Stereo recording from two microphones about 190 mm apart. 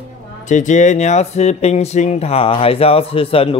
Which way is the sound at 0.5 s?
40° left (ahead or behind).